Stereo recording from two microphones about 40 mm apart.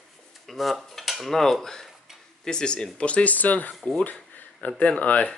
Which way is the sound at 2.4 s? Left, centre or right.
Centre.